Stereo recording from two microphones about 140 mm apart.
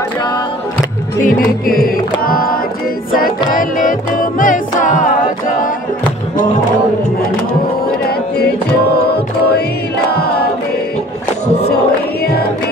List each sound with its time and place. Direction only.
1.2 s music: 90° left